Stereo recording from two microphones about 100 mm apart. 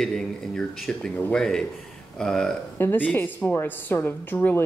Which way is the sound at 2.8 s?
20° left (ahead or behind).